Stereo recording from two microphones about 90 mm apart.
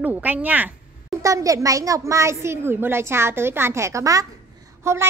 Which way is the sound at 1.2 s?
35° right (ahead or behind).